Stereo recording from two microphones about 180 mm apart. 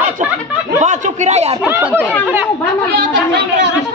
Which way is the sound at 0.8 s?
40° right (ahead or behind).